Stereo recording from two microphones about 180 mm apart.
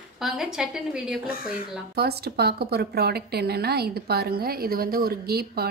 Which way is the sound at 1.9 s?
60° right (ahead or behind).